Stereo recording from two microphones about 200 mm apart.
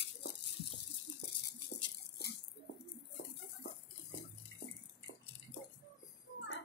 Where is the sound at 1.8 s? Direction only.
55° left (ahead or behind).